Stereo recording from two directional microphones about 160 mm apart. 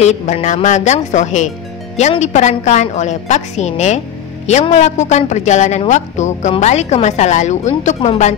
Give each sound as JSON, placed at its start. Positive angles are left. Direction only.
{"t": 0.0, "sound": "a woman's voice", "side_deg": 45}